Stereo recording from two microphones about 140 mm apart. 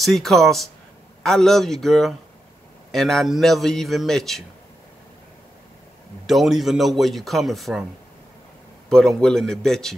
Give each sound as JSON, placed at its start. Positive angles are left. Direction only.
{"t": 0.0, "sound": "a man's voice", "side_deg": 0}
{"t": 6.2, "sound": "a man's voice", "side_deg": 0}
{"t": 8.8, "sound": "a man's voice", "side_deg": 5}